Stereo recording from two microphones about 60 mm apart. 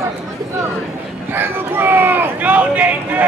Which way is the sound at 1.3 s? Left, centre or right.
Right.